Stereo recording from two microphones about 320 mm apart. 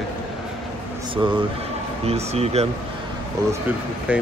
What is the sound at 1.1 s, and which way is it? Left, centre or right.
Speech, centre.